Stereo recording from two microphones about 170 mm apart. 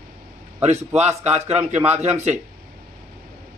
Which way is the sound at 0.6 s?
40° right (ahead or behind).